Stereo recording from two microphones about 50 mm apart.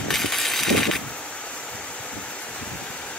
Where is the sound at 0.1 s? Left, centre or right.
Centre.